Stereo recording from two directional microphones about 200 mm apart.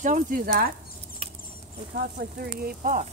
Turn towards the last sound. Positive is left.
turn(degrees=-45)  # may be behind; listen again after turning